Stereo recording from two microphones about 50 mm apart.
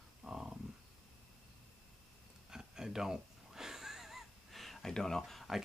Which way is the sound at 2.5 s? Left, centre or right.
Centre.